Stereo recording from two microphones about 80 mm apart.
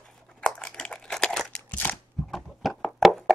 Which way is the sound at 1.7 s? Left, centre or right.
Left.